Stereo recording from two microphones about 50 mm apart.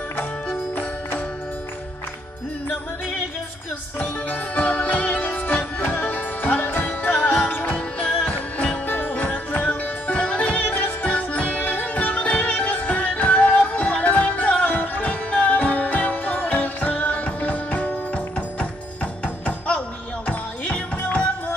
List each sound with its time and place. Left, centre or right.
0.2 s music: left
4.0 s music: left